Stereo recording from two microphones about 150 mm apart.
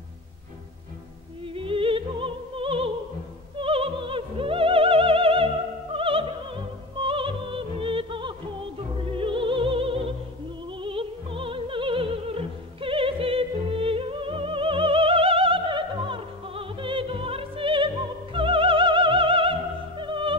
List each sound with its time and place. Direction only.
1.5 s opera: 35° right (ahead or behind)
3.5 s music: 35° right (ahead or behind)
18.3 s opera: 35° right (ahead or behind)